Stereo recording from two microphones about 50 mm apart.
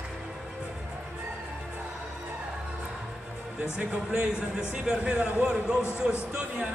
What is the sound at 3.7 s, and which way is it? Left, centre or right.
A man's voice, right.